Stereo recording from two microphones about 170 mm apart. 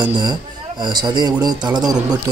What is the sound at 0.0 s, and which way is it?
A man's voice, 25° right (ahead or behind).